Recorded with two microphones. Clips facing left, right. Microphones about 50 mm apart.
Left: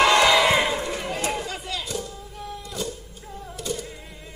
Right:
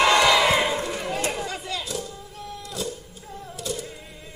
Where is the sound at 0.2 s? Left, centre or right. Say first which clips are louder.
Left 1 dB; centre.